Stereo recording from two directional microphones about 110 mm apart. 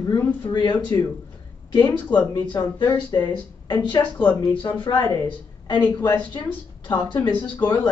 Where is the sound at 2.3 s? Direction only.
40° left (ahead or behind).